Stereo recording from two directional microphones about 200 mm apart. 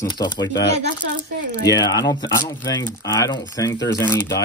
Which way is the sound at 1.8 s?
20° left (ahead or behind).